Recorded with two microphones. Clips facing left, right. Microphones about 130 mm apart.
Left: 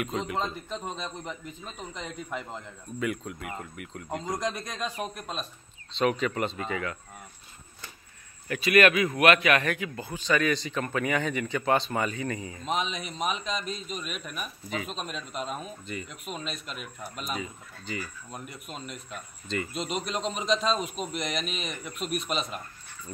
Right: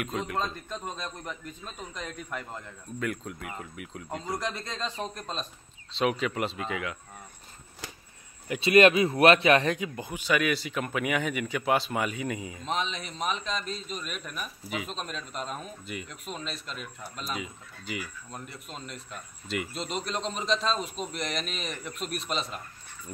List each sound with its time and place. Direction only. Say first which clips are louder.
0.0 s speech: left 1 dB; centre (ahead or behind)
0.4 s a man's voice: left 1 dB; 20° left (ahead or behind)
3.0 s speech: left 2 dB; centre (ahead or behind)
4.3 s a man's voice: left 1 dB; 20° left (ahead or behind); by 7.0 s 5° right (ahead or behind)
8.5 s a man's voice: right 2 dB; 25° right (ahead or behind); by 12.6 s 10° right (ahead or behind)
12.6 s a man's voice: left 2 dB; 5° left (ahead or behind)
15.8 s speech: left 1 dB; 5° right (ahead or behind)
16.6 s a man's voice: left 1 dB; 10° left (ahead or behind)
17.4 s a man's voice: left 1 dB; 10° right (ahead or behind)
18.7 s a man's voice: left 2 dB; 5° left (ahead or behind)
19.4 s speech: left 1 dB; 5° right (ahead or behind)
19.9 s a man's voice: left 1 dB; 5° left (ahead or behind)